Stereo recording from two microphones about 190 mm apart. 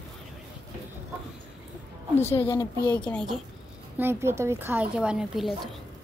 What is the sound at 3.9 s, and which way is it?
Speech, 10° right (ahead or behind).